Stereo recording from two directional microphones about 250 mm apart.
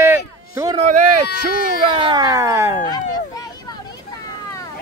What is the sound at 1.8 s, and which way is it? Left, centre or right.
Speech, centre.